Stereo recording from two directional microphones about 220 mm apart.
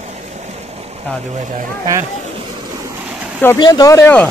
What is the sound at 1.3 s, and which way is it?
Speech, 35° right (ahead or behind).